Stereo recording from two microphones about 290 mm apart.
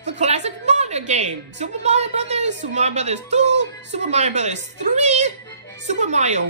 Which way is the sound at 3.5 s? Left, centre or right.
Right.